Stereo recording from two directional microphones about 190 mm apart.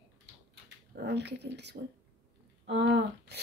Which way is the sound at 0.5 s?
60° right (ahead or behind).